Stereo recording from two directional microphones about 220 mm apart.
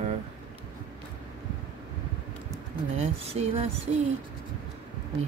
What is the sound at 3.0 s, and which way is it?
Speech, 30° right (ahead or behind).